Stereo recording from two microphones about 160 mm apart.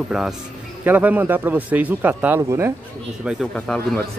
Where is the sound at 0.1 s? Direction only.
Centre (ahead or behind); by 2.7 s 15° right (ahead or behind).